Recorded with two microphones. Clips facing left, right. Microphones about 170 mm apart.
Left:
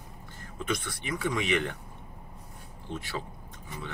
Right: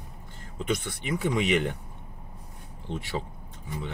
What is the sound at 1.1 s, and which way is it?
Speech, 20° right (ahead or behind).